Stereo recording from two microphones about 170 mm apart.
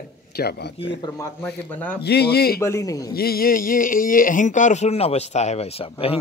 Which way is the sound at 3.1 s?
60° left (ahead or behind).